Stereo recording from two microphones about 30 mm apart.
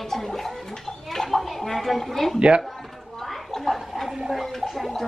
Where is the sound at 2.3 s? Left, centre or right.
Right.